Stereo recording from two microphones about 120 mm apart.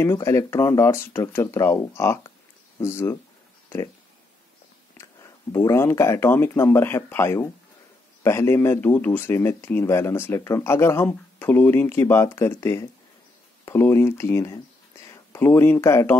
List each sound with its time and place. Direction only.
0.0 s speech: 25° left (ahead or behind)
4.9 s speech: 25° left (ahead or behind)